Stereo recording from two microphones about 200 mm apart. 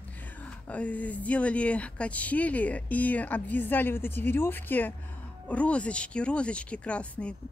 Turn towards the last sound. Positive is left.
turn(degrees=5)  # may be behind; listen again after turning